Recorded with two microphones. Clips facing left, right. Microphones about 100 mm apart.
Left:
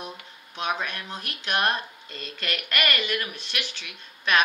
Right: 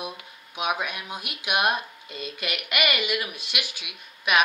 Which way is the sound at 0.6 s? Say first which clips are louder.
Right 1 dB; 10° right (ahead or behind).